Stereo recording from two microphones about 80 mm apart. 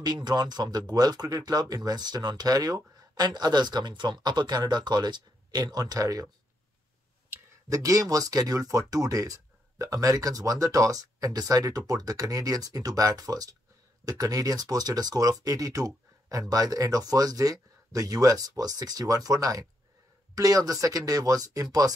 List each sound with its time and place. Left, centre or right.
0.0 s speech: right
7.2 s speech: right